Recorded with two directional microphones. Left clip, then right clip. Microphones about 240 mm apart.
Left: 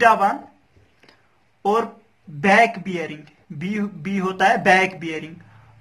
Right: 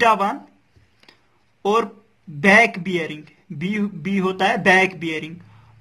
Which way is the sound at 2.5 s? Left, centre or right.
Right.